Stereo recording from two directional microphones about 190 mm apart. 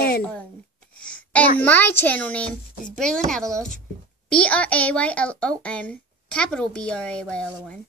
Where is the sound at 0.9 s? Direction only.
5° left (ahead or behind).